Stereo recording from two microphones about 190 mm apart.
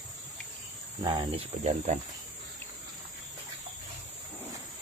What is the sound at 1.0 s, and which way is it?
Cricket, 25° right (ahead or behind).